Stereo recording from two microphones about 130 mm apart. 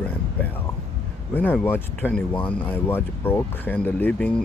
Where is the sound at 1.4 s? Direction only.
15° left (ahead or behind).